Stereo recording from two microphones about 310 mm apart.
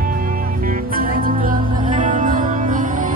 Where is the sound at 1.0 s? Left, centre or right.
Right.